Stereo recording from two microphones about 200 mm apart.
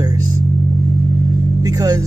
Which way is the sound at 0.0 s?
20° right (ahead or behind).